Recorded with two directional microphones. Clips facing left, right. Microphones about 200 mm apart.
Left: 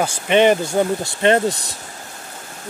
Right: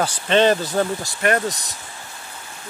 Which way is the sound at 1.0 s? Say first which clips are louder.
Left 5 dB; 25° left (ahead or behind).